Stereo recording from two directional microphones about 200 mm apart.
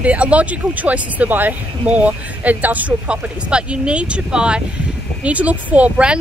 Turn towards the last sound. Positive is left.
turn(degrees=-5)  # may be behind; listen again after turning